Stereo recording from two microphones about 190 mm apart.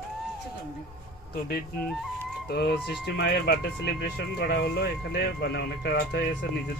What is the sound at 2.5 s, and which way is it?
Speech, 60° left (ahead or behind).